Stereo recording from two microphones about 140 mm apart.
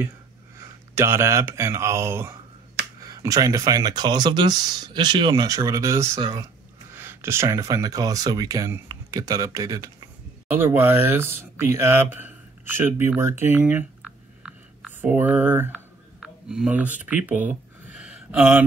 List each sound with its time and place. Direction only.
0.6 s speech: 20° right (ahead or behind)
6.9 s speech: 15° right (ahead or behind)
10.6 s speech: 15° right (ahead or behind)
14.4 s a sound: 10° right (ahead or behind)
16.4 s speech: 5° right (ahead or behind)
17.0 s a sound: 10° right (ahead or behind)